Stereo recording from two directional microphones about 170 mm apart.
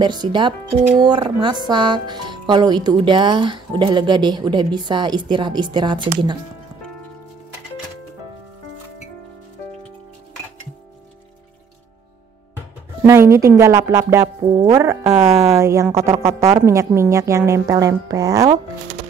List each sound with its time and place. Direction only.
0.0 s speech: 25° right (ahead or behind)
13.0 s a woman's voice: 15° right (ahead or behind)
14.4 s speech: 30° right (ahead or behind)
14.8 s a woman's voice: 15° right (ahead or behind)